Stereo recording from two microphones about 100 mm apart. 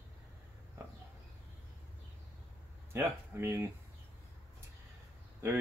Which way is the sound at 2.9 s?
25° right (ahead or behind).